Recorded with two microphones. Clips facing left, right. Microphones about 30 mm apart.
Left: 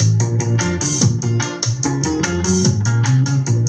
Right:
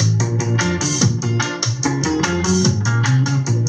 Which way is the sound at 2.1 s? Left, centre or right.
Centre.